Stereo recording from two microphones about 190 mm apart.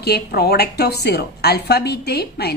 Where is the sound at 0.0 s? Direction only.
55° left (ahead or behind).